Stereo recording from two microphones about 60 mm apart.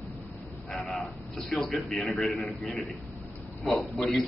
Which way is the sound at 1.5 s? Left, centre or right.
Centre.